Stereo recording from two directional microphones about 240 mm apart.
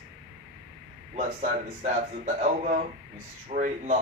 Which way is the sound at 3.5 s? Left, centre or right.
Right.